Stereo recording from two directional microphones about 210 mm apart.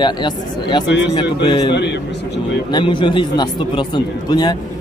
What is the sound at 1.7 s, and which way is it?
Speech, 55° left (ahead or behind).